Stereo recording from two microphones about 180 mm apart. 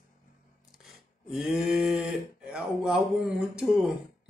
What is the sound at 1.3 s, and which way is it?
Speech, centre (ahead or behind).